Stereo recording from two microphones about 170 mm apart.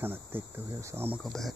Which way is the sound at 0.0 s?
10° right (ahead or behind).